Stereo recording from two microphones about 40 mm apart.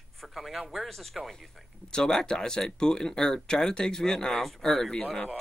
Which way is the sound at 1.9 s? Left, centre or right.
Centre.